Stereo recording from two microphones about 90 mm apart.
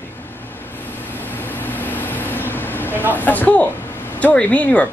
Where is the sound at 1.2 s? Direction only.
20° left (ahead or behind).